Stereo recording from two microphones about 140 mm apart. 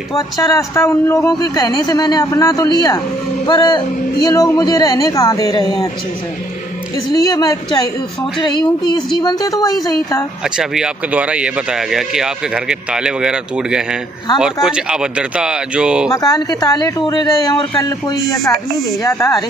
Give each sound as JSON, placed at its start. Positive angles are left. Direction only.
{"t": 0.4, "sound": "a man's voice", "side_deg": 20}
{"t": 7.1, "sound": "a man's voice", "side_deg": 25}
{"t": 10.6, "sound": "speech", "side_deg": -5}
{"t": 16.1, "sound": "a man's voice", "side_deg": 25}